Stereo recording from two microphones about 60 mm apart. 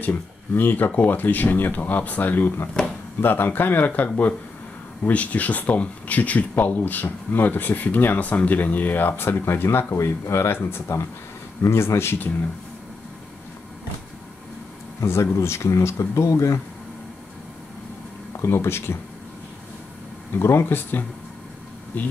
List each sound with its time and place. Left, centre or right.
0.0 s speech: left
15.0 s speech: left
18.3 s speech: left
20.3 s speech: left